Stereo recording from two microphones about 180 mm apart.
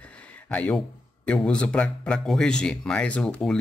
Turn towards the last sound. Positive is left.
turn(degrees=5)  # may be behind; listen again after turning